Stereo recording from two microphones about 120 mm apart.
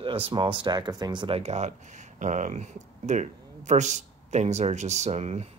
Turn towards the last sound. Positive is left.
turn(degrees=-65)  # may be behind; listen again after turning